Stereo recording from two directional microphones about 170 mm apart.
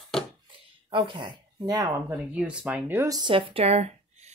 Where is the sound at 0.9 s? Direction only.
30° right (ahead or behind).